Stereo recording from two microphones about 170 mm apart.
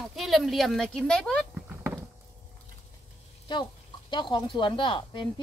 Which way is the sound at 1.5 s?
10° right (ahead or behind).